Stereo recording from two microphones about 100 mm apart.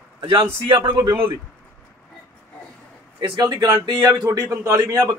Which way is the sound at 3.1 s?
40° right (ahead or behind).